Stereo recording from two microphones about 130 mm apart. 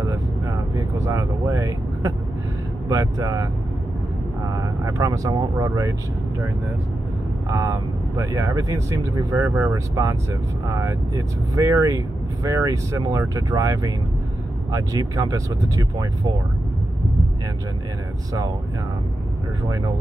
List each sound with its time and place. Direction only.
0.0 s vehicle: 25° right (ahead or behind)
2.9 s speech: 25° right (ahead or behind)
4.5 s speech: 25° right (ahead or behind)
7.4 s speech: 25° right (ahead or behind)